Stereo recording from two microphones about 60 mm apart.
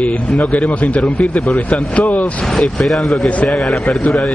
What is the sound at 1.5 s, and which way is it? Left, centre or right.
Speech, centre.